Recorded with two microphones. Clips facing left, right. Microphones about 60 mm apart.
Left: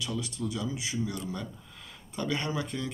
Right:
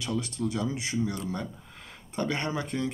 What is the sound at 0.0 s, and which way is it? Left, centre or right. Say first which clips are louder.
Speech: right 3 dB; right.